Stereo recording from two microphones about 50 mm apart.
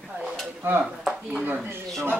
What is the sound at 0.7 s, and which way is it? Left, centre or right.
Speech, right.